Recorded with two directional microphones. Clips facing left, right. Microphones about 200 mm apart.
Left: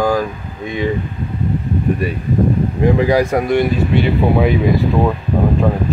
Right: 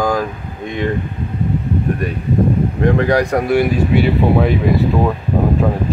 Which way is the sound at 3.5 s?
5° right (ahead or behind).